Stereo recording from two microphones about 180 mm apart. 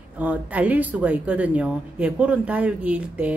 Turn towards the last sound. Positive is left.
turn(degrees=-5)  # may be behind; listen again after turning